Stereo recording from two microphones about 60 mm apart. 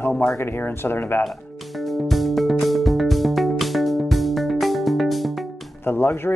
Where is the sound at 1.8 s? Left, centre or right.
Centre.